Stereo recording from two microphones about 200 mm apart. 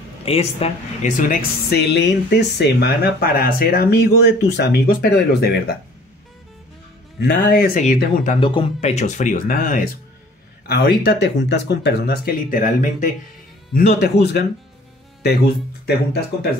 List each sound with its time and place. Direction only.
0.2 s speech: 30° left (ahead or behind); by 5.6 s 55° left (ahead or behind)
7.2 s speech: 55° left (ahead or behind)
8.4 s speech: 25° left (ahead or behind)
13.7 s speech: 50° left (ahead or behind)